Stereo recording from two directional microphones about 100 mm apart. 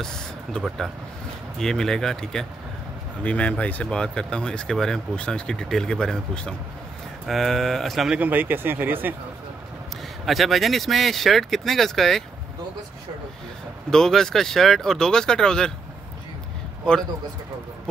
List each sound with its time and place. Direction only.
0.0 s speech: 5° left (ahead or behind)
8.2 s speech: 20° right (ahead or behind)
10.2 s speech: centre (ahead or behind)
13.8 s speech: 5° left (ahead or behind)